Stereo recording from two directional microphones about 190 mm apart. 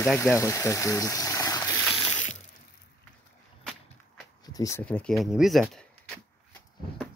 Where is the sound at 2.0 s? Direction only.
35° left (ahead or behind).